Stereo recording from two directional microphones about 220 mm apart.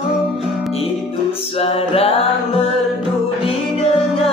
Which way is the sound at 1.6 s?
25° left (ahead or behind).